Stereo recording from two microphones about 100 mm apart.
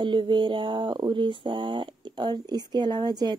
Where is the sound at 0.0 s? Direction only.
50° right (ahead or behind).